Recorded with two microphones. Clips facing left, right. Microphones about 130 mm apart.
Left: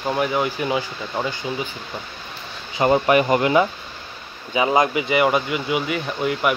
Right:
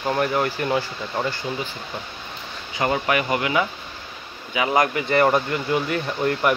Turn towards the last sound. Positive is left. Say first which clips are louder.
# even
turn(degrees=5)  # may be behind; listen again after turning